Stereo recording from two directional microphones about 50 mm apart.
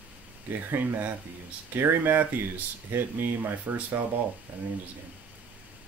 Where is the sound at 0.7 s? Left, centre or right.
Right.